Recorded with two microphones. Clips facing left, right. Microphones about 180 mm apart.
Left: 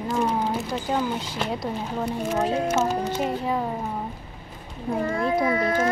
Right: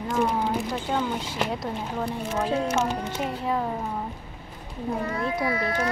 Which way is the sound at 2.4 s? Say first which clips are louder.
Even; 30° left (ahead or behind).